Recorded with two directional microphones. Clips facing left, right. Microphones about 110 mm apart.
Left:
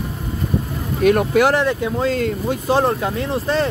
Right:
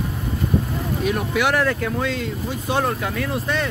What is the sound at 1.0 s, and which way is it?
Speech, 55° left (ahead or behind).